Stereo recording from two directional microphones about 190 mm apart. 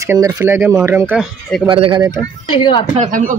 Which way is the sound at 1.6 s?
25° right (ahead or behind).